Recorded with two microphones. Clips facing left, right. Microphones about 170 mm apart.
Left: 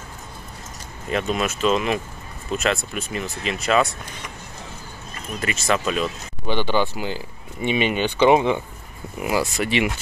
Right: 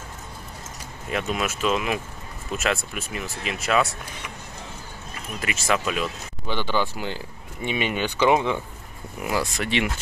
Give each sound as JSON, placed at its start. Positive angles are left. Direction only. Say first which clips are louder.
{"t": 1.1, "sound": "speech", "louder": "left 3 dB", "side_deg": -5}
{"t": 5.4, "sound": "speech", "louder": "left 2 dB", "side_deg": -5}
{"t": 6.4, "sound": "speech", "louder": "left 4 dB", "side_deg": 15}
{"t": 7.0, "sound": "speech", "louder": "left 3 dB", "side_deg": 5}
{"t": 7.8, "sound": "speech", "louder": "left 4 dB", "side_deg": 20}
{"t": 9.2, "sound": "speech", "louder": "left 4 dB", "side_deg": 5}